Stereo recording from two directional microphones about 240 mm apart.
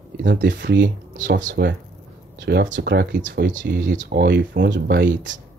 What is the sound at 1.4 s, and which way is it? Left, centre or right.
Speech, right.